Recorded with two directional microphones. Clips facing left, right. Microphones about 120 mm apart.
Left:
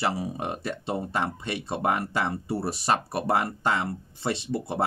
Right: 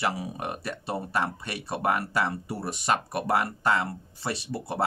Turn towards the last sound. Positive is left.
turn(degrees=25)  # may be behind; listen again after turning